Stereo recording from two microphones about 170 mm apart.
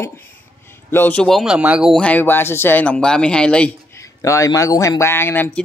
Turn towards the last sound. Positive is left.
turn(degrees=10)  # may be behind; listen again after turning